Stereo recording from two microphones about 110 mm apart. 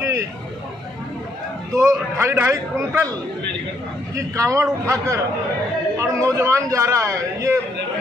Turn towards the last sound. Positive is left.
turn(degrees=-25)  # may be behind; listen again after turning